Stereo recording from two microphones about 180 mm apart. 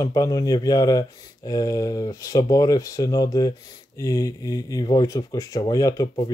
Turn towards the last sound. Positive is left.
turn(degrees=20)  # may be behind; listen again after turning